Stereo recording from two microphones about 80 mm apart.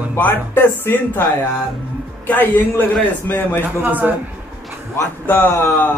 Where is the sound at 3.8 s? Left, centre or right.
Right.